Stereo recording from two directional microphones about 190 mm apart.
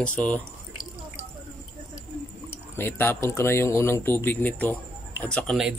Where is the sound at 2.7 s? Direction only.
10° left (ahead or behind).